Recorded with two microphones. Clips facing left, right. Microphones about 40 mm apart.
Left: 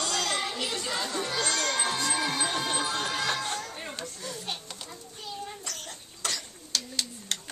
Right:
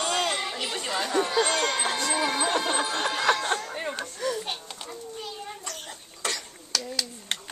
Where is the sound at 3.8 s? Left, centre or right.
Right.